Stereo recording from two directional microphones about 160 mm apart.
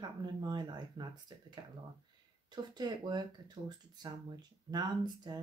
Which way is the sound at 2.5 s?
25° right (ahead or behind).